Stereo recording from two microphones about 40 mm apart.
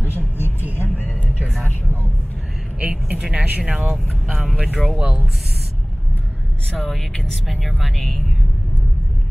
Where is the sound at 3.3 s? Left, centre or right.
Right.